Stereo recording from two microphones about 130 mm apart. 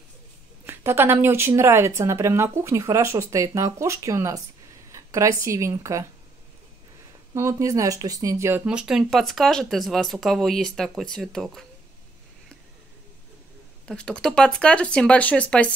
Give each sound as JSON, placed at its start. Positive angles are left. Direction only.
{"t": 0.7, "sound": "speech", "side_deg": -15}
{"t": 7.3, "sound": "speech", "side_deg": -25}
{"t": 8.6, "sound": "speech", "side_deg": -5}
{"t": 13.8, "sound": "speech", "side_deg": 5}